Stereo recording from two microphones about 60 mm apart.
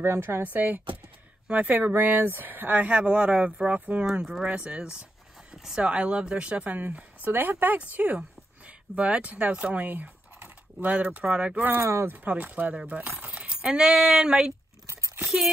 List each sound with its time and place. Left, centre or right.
0.0 s speech: right
0.4 s speech: right
11.8 s speech: right
12.4 s speech: right
14.9 s a sound: right